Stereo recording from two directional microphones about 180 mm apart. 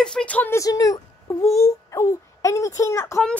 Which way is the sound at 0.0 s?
5° left (ahead or behind).